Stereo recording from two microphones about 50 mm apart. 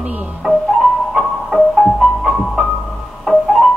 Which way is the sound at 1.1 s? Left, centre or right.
Centre.